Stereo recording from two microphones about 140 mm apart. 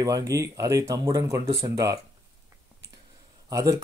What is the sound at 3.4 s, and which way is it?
Speech, 25° right (ahead or behind).